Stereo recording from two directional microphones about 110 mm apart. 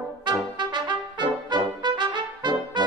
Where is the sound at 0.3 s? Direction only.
45° right (ahead or behind).